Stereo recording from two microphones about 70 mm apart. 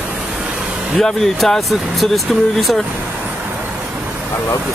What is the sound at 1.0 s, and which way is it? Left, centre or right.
Speech, centre.